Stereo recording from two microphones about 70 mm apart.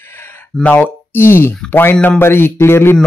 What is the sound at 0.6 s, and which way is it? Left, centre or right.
Speech, left.